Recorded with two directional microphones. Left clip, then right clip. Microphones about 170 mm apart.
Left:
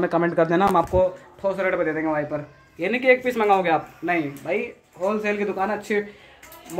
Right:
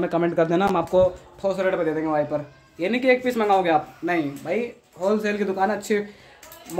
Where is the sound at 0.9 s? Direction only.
20° right (ahead or behind).